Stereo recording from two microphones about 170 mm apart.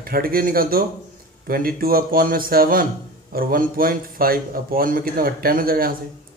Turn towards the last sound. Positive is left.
turn(degrees=-60)  # may be behind; listen again after turning